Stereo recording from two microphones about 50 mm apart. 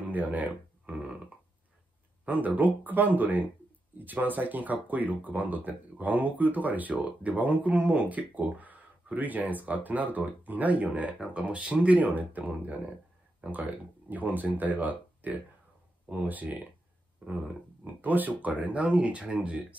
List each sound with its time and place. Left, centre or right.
0.0 s a sound: right
2.2 s speech: right
17.8 s speech: right